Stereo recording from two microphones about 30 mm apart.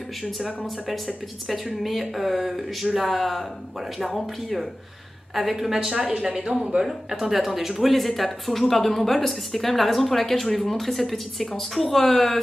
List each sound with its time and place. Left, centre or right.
0.8 s a woman's voice: centre
5.9 s speech: right
6.8 s a woman's voice: centre